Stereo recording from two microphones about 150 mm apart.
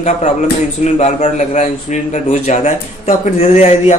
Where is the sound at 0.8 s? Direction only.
50° left (ahead or behind).